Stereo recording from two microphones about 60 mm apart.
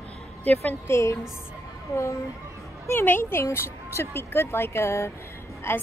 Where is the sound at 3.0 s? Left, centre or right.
Left.